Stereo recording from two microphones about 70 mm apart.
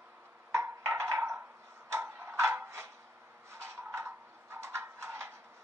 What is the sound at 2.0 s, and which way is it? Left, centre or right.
Tick-tock, right.